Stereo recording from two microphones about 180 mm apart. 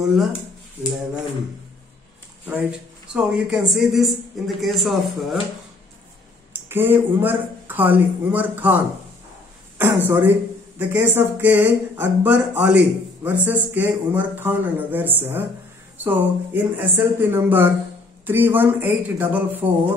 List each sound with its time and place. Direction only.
0.0 s a man's voice: centre (ahead or behind)
3.1 s a man's voice: 5° right (ahead or behind)
6.5 s speech: 10° right (ahead or behind)
10.0 s speech: 10° right (ahead or behind)